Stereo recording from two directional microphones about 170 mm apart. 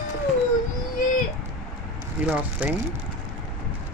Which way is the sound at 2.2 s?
5° right (ahead or behind).